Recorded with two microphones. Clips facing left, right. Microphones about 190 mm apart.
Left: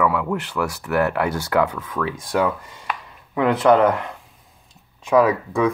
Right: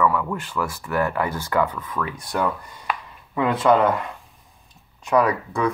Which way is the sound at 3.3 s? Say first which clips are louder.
Left 3 dB; 75° left (ahead or behind).